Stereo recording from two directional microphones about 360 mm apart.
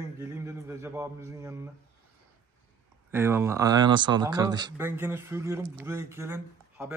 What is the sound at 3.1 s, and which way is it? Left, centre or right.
Speech, centre.